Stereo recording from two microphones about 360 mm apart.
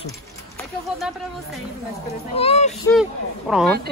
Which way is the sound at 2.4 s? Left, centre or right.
Centre.